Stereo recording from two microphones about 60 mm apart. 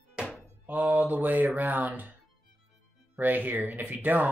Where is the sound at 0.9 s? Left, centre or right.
Right.